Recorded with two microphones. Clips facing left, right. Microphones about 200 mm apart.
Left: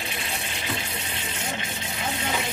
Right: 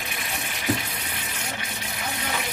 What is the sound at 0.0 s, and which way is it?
Water, 30° left (ahead or behind).